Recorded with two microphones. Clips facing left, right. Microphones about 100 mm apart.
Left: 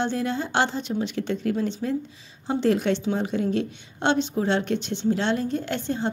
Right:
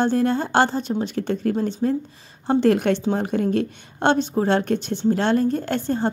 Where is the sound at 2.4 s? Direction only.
55° right (ahead or behind).